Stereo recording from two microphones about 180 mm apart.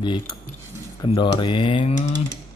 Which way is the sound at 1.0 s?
25° left (ahead or behind).